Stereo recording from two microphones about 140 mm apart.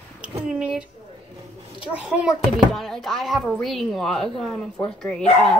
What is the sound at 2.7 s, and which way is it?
Speech, centre (ahead or behind).